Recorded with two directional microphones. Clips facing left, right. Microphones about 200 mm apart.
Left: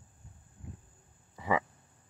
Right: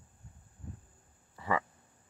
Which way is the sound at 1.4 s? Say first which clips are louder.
Left 2 dB; 15° left (ahead or behind).